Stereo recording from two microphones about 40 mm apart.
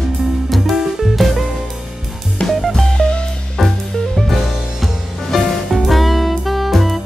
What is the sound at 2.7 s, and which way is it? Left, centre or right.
Music, centre.